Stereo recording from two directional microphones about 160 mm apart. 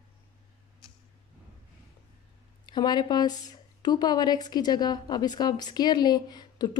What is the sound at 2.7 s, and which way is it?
Speech, 25° left (ahead or behind).